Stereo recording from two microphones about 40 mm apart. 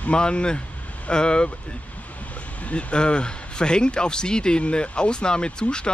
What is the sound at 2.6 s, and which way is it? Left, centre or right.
Speech, left.